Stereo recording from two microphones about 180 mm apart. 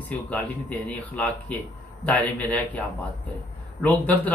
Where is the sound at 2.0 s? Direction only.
10° left (ahead or behind).